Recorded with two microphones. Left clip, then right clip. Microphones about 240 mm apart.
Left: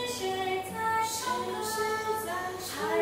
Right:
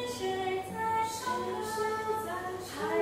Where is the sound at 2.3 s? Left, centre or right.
Centre.